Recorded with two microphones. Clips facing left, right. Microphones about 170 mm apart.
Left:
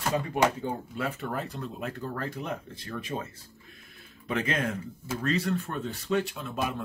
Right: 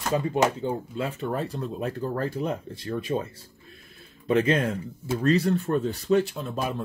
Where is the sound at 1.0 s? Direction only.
30° right (ahead or behind).